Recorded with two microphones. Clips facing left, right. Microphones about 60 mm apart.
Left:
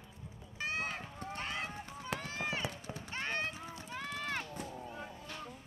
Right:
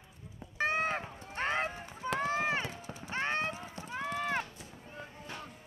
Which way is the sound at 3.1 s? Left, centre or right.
Right.